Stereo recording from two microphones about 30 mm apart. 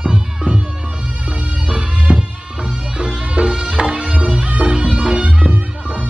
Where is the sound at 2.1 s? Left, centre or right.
Right.